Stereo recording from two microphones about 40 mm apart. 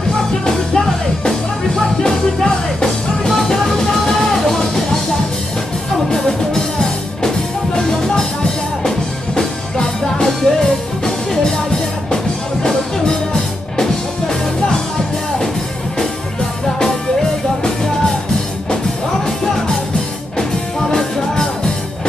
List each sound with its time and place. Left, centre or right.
0.5 s music: centre
6.0 s music: centre
13.0 s music: centre